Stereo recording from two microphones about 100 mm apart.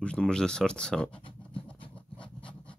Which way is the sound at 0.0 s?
10° left (ahead or behind).